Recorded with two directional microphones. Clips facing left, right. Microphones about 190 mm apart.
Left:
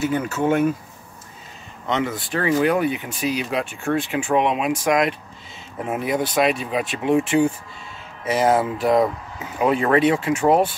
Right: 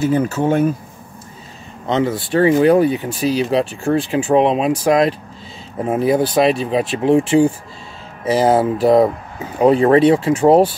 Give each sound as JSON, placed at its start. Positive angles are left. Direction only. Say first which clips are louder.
{"t": 0.0, "sound": "speech", "louder": "right 5 dB", "side_deg": -35}
{"t": 1.9, "sound": "speech", "louder": "right 6 dB", "side_deg": -30}